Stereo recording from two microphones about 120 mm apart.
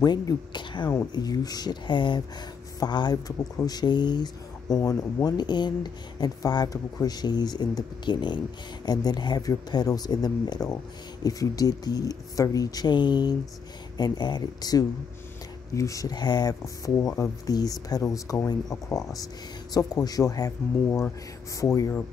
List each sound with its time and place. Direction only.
0.0 s speech: 35° left (ahead or behind)